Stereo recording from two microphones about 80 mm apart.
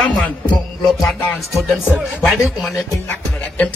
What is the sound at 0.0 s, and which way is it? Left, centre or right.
Speech, centre.